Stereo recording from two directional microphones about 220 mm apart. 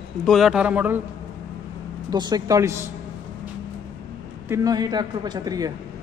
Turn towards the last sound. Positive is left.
turn(degrees=-15)  # may be behind; listen again after turning